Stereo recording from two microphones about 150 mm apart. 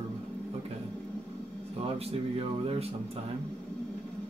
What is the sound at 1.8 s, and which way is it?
Speech, 40° right (ahead or behind).